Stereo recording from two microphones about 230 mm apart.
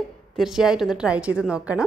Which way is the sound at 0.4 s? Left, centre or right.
Centre.